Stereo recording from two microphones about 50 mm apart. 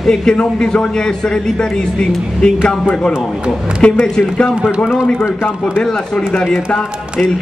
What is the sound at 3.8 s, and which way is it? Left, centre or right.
Speech, left.